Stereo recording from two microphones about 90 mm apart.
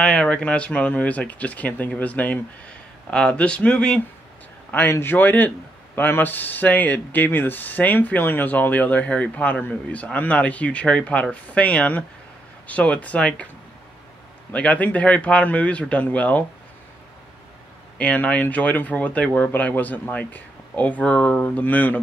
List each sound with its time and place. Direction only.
0.0 s speech: 15° left (ahead or behind)
4.6 s speech: 20° left (ahead or behind)
14.5 s speech: 15° left (ahead or behind)
17.9 s speech: 15° left (ahead or behind)